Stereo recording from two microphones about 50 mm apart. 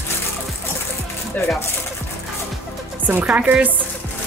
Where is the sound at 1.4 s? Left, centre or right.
Left.